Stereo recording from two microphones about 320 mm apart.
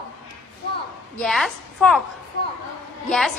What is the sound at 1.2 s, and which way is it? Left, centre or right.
Speech, centre.